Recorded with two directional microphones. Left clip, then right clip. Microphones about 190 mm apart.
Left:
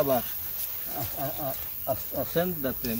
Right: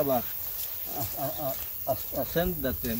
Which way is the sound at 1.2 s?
5° left (ahead or behind).